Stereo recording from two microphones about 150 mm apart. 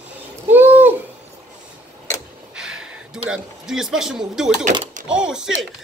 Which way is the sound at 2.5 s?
5° right (ahead or behind).